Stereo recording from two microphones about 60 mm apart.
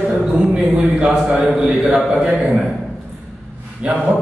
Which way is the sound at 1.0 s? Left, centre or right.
Centre.